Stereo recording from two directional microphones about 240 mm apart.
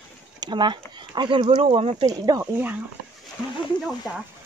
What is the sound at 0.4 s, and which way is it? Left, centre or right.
Speech, centre.